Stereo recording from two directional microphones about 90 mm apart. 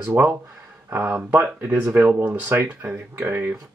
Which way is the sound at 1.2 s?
25° right (ahead or behind).